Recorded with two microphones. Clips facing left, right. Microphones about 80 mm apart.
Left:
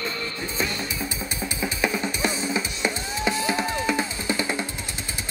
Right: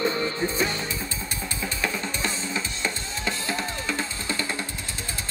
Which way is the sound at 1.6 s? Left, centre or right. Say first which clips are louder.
Left 4 dB; centre.